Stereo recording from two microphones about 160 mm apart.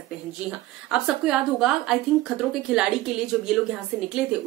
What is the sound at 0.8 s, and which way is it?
A woman's voice, 5° right (ahead or behind).